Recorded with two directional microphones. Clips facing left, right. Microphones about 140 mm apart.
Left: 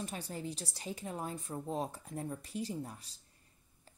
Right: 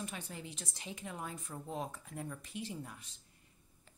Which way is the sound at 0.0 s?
35° left (ahead or behind).